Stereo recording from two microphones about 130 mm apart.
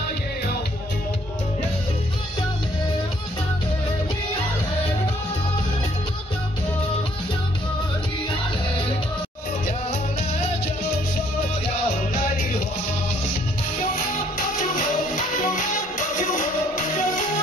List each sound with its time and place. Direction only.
14.6 s music: 85° left